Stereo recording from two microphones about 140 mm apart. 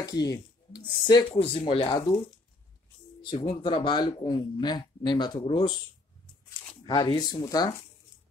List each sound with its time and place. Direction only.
0.0 s speech: 25° left (ahead or behind)
1.4 s speech: 45° left (ahead or behind)
3.3 s speech: 40° left (ahead or behind)
6.9 s speech: 30° left (ahead or behind)